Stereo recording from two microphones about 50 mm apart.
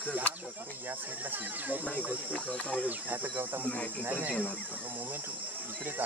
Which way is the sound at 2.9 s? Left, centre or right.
Right.